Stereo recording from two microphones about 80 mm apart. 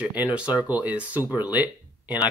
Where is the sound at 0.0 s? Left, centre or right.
Centre.